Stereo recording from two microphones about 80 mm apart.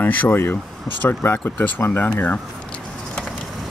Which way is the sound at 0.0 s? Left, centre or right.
Left.